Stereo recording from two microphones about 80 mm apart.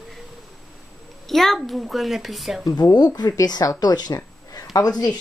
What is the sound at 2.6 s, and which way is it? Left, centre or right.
Speech, left.